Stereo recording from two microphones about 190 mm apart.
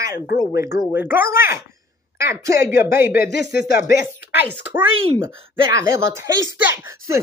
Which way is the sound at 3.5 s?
50° left (ahead or behind).